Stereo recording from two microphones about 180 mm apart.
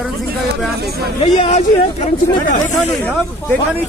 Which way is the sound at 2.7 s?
5° left (ahead or behind).